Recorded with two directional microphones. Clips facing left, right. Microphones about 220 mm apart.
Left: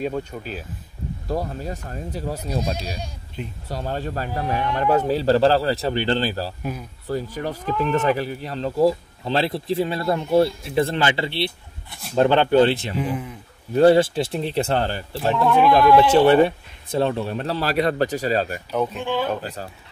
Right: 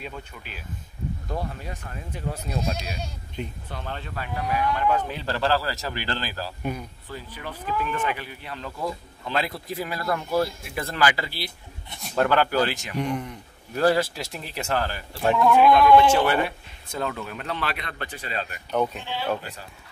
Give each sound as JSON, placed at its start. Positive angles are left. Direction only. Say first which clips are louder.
{"t": 0.0, "sound": "speech", "louder": "left 12 dB", "side_deg": 40}
{"t": 6.6, "sound": "speech", "louder": "even", "side_deg": 5}
{"t": 7.1, "sound": "speech", "louder": "left 13 dB", "side_deg": 40}
{"t": 12.9, "sound": "speech", "louder": "left 2 dB", "side_deg": 5}
{"t": 13.7, "sound": "speech", "louder": "left 7 dB", "side_deg": 30}
{"t": 15.3, "sound": "speech", "louder": "even", "side_deg": 0}
{"t": 16.0, "sound": "speech", "louder": "left 6 dB", "side_deg": 30}
{"t": 18.9, "sound": "speech", "louder": "left 5 dB", "side_deg": 50}